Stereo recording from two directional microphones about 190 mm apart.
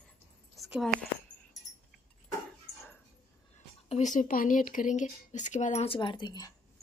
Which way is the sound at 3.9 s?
40° left (ahead or behind).